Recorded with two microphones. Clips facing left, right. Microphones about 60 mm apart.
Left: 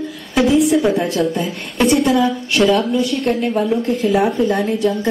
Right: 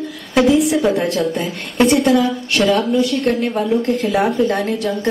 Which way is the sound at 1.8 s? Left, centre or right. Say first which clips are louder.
Right 1 dB; centre.